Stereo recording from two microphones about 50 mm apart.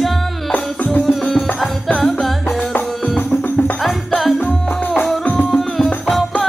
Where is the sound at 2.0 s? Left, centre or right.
Centre.